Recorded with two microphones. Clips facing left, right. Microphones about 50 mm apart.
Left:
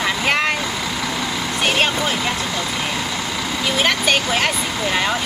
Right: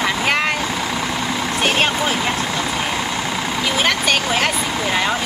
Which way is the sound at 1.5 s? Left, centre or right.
Centre.